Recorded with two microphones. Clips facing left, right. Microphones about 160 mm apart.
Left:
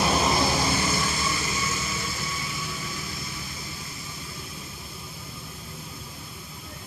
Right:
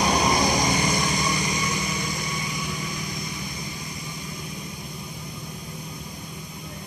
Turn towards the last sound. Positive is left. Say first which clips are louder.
# right 5 dB
turn(degrees=-15)  # may be behind; listen again after turning